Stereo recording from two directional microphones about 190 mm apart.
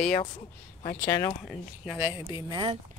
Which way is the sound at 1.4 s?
5° right (ahead or behind).